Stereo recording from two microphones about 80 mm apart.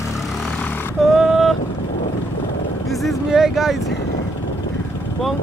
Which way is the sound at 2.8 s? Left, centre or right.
Centre.